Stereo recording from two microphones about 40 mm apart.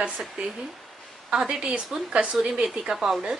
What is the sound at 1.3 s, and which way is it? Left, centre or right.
Speech, centre.